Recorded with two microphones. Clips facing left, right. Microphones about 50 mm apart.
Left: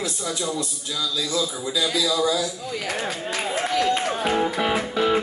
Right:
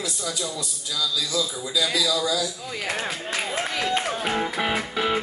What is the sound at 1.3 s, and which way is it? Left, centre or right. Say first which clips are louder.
A man's voice: left 1 dB; left.